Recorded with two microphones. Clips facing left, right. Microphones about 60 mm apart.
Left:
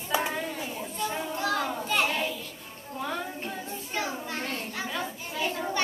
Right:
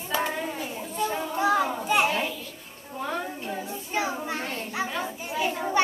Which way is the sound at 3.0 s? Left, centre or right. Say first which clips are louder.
Right 2 dB; centre.